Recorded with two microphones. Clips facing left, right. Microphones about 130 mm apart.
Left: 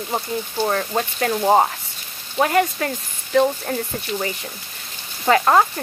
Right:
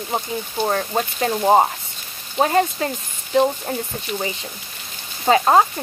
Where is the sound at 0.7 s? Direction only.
30° right (ahead or behind).